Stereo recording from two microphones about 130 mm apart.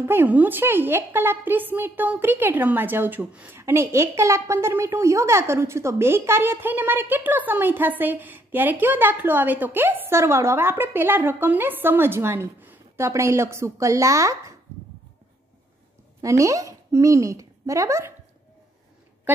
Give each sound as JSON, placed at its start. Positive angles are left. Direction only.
{"t": 0.0, "sound": "a woman's voice", "side_deg": -15}
{"t": 16.2, "sound": "speech", "side_deg": -25}